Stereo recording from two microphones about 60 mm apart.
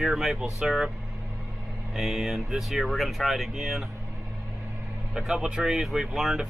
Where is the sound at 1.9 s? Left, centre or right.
Centre.